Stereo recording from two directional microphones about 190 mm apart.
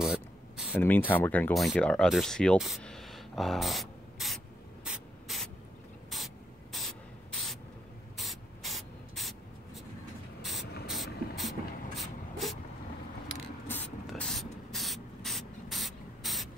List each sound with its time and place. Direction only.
0.0 s a sound: 5° right (ahead or behind)
0.7 s speech: 10° left (ahead or behind)
4.8 s spray: centre (ahead or behind)
10.6 s spray: 60° left (ahead or behind)
10.9 s a sound: centre (ahead or behind)
14.0 s spray: centre (ahead or behind)